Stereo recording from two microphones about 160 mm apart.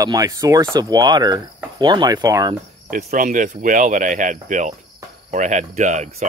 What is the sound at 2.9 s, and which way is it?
Speech, 55° right (ahead or behind).